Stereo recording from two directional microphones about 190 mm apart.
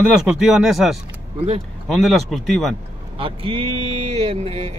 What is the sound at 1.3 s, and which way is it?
Speech, 30° right (ahead or behind).